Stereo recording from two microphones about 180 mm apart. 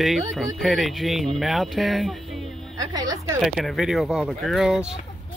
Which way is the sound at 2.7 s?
20° right (ahead or behind).